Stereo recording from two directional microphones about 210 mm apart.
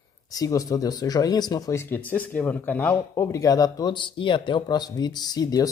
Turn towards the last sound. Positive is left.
turn(degrees=20)  # may be behind; listen again after turning